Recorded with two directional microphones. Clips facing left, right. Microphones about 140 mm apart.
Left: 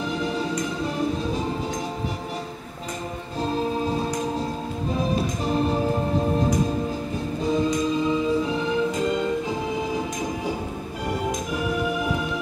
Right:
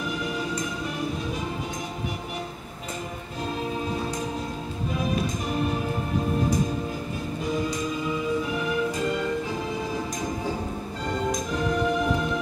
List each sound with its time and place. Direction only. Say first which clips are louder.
0.2 s music: left 4 dB; 30° left (ahead or behind)
3.4 s music: left 5 dB; 35° left (ahead or behind)
5.1 s music: left 3 dB; 30° left (ahead or behind)
7.4 s music: left 6 dB; 25° left (ahead or behind)
11.1 s music: even; 5° left (ahead or behind)